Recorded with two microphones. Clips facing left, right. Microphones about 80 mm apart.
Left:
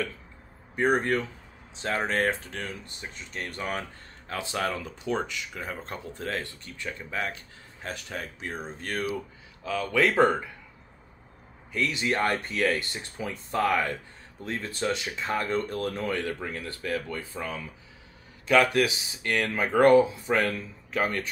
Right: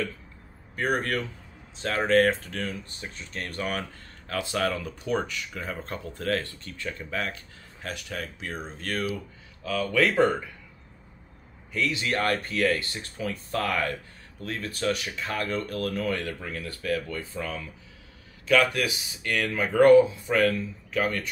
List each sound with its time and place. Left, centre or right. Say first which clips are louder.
0.7 s speech: left 3 dB; centre
11.7 s speech: even; left
18.5 s speech: left 1 dB; left